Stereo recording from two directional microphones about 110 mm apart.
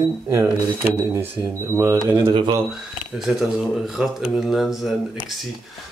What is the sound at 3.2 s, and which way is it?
Speech, 5° right (ahead or behind).